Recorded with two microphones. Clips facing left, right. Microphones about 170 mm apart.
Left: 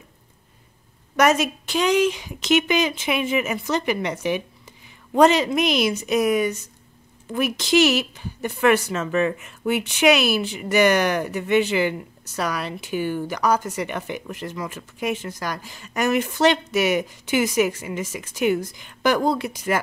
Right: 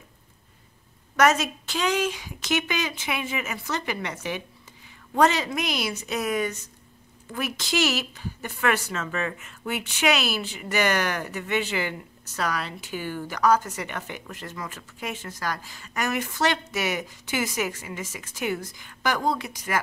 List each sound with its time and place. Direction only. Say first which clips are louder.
1.1 s a woman's voice: left 3 dB; 15° left (ahead or behind); by 19.4 s 30° left (ahead or behind)